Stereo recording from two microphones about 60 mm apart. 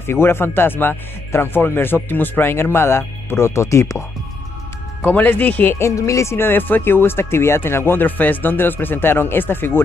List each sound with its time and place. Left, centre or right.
0.0 s speech: left
5.0 s speech: left
5.8 s speech: left